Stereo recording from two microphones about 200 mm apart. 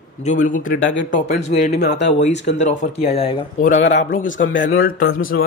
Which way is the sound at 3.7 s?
65° left (ahead or behind).